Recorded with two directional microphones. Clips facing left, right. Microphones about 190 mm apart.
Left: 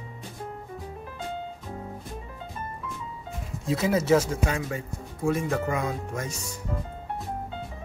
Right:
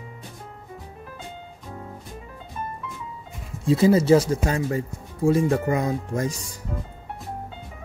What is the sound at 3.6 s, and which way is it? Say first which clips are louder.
Speech: right 6 dB; 30° right (ahead or behind).